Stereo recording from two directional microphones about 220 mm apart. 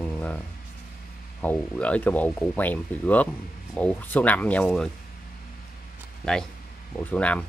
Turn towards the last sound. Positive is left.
turn(degrees=5)  # may be behind; listen again after turning